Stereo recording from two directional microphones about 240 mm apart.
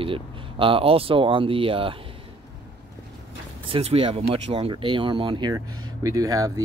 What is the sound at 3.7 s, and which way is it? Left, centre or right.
Speech, right.